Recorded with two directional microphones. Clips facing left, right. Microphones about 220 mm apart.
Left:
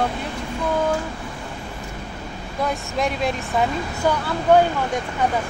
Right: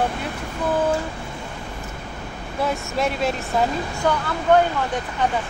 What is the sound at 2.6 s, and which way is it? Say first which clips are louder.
Speech: even; centre (ahead or behind).